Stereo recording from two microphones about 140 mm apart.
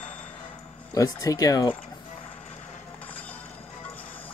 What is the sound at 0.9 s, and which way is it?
Speech, 25° left (ahead or behind).